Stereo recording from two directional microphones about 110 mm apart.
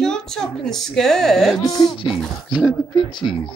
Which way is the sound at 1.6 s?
35° left (ahead or behind).